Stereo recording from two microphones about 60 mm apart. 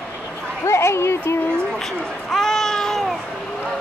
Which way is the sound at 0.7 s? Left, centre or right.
Left.